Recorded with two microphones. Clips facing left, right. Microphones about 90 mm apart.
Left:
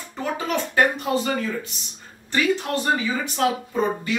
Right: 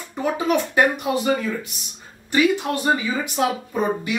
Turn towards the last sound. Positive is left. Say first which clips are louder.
# right 1 dB
turn(degrees=-15)  # may be behind; listen again after turning